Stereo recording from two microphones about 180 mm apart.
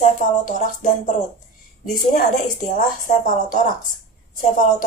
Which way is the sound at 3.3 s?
45° left (ahead or behind).